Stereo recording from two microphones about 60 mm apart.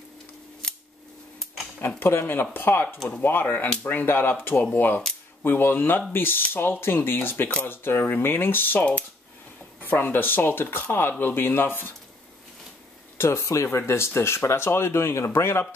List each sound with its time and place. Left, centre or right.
0.6 s scissors: centre
1.8 s speech: left
13.2 s speech: left
13.7 s speech: left